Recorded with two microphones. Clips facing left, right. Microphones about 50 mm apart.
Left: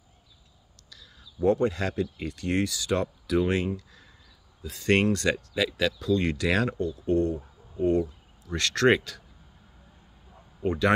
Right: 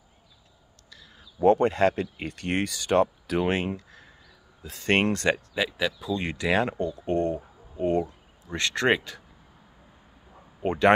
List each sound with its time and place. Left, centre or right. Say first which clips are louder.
0.8 s speech: right 1 dB; right; by 6.8 s centre
6.8 s speech: left 1 dB; right
10.6 s speech: right 2 dB; right